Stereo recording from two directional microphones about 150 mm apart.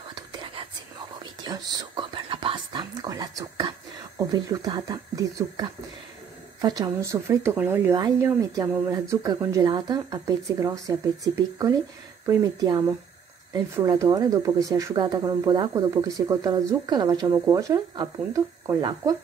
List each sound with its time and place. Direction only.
0.1 s whispering: 30° right (ahead or behind)
4.2 s speech: 25° right (ahead or behind)